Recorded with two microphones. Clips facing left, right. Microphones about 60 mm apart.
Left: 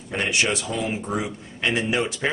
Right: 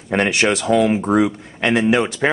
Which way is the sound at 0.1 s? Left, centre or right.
Right.